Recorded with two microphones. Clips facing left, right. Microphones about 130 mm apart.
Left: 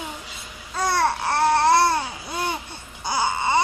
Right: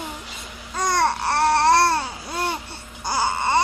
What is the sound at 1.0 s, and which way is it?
Babbling, 10° right (ahead or behind).